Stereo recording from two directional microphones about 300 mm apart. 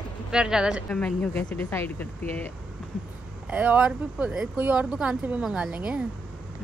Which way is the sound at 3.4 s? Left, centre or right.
Centre.